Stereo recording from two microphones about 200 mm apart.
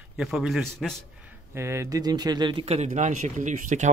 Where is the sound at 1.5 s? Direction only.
15° right (ahead or behind); by 3.8 s 40° right (ahead or behind).